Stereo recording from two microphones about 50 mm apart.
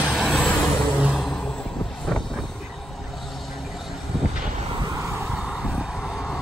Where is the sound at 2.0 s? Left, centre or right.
Centre.